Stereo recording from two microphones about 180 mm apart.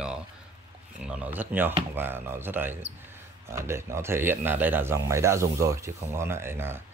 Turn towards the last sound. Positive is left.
turn(degrees=-15)  # may be behind; listen again after turning